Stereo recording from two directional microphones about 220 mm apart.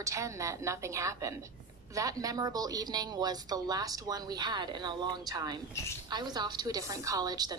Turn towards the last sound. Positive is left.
turn(degrees=-20)  # may be behind; listen again after turning